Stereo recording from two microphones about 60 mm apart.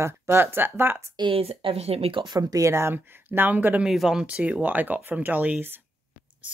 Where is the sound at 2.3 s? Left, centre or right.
Right.